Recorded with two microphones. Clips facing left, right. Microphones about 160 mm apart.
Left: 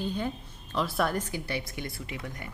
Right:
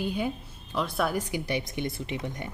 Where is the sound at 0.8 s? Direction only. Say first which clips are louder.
Even; centre (ahead or behind).